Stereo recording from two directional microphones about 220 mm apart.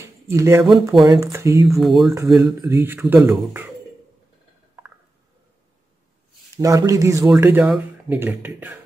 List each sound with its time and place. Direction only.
0.3 s speech: 10° right (ahead or behind)
1.8 s speech: centre (ahead or behind)
2.1 s speech: 15° right (ahead or behind)
4.8 s a sound: 10° right (ahead or behind)
6.5 s speech: 15° right (ahead or behind)